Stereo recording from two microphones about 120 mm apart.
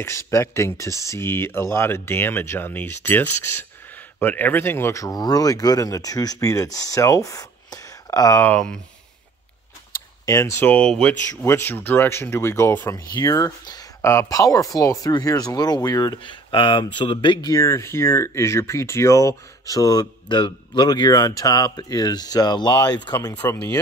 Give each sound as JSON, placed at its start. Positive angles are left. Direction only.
{"t": 0.0, "sound": "speech", "side_deg": 25}
{"t": 8.4, "sound": "speech", "side_deg": 10}
{"t": 10.2, "sound": "speech", "side_deg": 25}
{"t": 12.9, "sound": "speech", "side_deg": 30}
{"t": 17.5, "sound": "speech", "side_deg": 25}
{"t": 23.4, "sound": "speech", "side_deg": 25}